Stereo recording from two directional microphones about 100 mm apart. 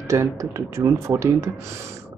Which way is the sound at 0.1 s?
30° right (ahead or behind).